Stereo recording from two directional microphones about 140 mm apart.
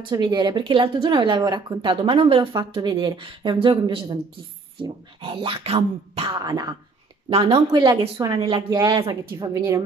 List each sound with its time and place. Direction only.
0.1 s speech: 30° right (ahead or behind)
6.4 s speech: 25° right (ahead or behind)
7.2 s speech: 45° right (ahead or behind)
8.6 s speech: 30° right (ahead or behind)
9.5 s speech: 25° right (ahead or behind)